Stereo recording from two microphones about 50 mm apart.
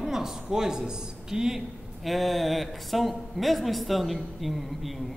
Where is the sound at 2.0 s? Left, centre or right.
Centre.